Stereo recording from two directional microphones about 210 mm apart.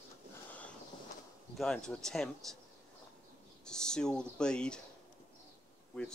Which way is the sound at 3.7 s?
5° left (ahead or behind).